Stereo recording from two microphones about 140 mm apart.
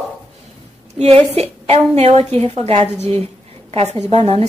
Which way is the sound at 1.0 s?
45° right (ahead or behind).